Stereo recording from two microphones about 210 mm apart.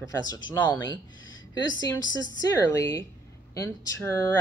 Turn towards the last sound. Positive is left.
turn(degrees=15)  # may be behind; listen again after turning